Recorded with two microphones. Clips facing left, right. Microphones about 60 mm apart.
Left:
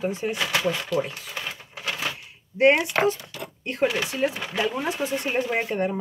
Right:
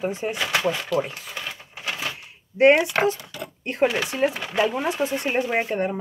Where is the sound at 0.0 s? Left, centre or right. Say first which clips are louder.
Even; centre.